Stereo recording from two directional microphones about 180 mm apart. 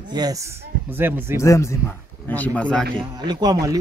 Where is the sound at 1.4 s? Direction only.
15° left (ahead or behind).